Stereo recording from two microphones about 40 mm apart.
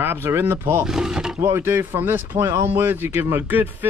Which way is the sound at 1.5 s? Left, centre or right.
Right.